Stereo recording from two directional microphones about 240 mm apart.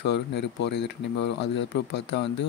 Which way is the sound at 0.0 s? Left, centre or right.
Left.